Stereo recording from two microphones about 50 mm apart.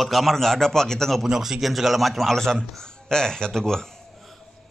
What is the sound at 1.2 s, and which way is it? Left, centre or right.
A man's voice, centre.